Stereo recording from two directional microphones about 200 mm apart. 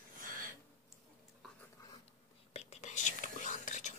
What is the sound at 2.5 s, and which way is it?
Whispering, 35° left (ahead or behind).